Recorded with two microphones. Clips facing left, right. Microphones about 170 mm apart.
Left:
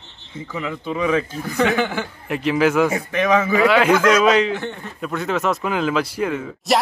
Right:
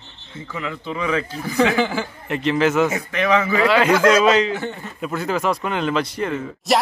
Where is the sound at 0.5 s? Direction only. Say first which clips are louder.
Left 2 dB; 15° left (ahead or behind).